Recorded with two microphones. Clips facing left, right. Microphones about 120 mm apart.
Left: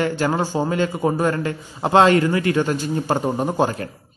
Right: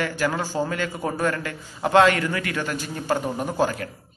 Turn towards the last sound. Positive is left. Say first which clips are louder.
# left 3 dB
turn(degrees=25)  # may be behind; listen again after turning